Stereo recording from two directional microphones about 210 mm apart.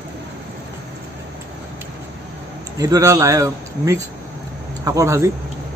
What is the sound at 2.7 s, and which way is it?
Speech, 15° right (ahead or behind).